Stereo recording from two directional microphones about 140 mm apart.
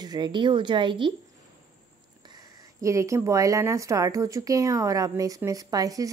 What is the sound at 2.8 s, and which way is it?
A woman's voice, 20° right (ahead or behind).